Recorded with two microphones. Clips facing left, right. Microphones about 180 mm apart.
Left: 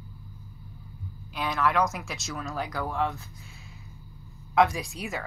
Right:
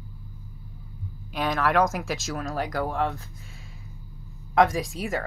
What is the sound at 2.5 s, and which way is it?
Speech, 40° right (ahead or behind).